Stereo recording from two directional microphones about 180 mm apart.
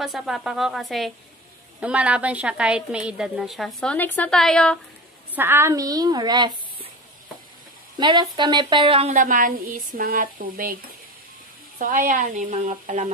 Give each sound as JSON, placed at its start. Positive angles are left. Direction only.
{"t": 0.0, "sound": "a woman's voice", "side_deg": 0}
{"t": 5.3, "sound": "a woman's voice", "side_deg": -10}
{"t": 8.0, "sound": "a woman's voice", "side_deg": -25}
{"t": 9.1, "sound": "stir", "side_deg": -45}
{"t": 11.8, "sound": "stir", "side_deg": -50}